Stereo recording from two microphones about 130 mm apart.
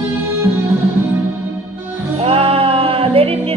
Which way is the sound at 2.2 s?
45° right (ahead or behind).